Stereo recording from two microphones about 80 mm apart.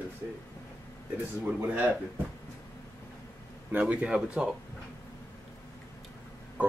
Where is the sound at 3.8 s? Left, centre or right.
Centre.